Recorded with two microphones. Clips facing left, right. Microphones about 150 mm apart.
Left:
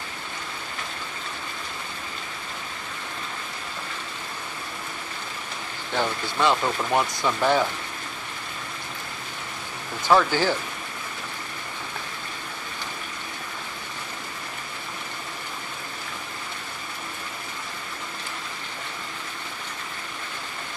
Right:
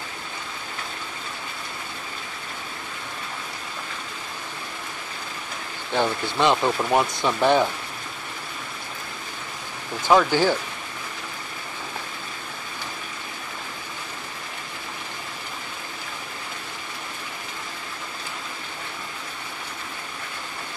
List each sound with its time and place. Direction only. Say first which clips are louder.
5.9 s speech: right 3 dB; 15° right (ahead or behind)
10.0 s speech: right 2 dB; 15° right (ahead or behind)